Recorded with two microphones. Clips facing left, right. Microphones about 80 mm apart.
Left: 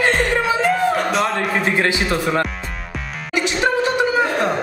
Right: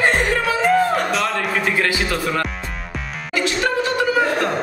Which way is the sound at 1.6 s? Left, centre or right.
Left.